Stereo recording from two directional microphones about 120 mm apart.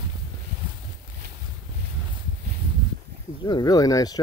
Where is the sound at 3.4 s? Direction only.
35° left (ahead or behind).